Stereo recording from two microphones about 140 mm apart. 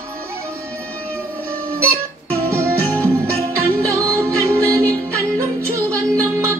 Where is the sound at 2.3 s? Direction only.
20° right (ahead or behind).